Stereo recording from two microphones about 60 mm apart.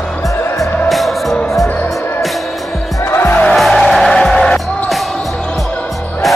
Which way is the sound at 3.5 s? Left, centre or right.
Centre.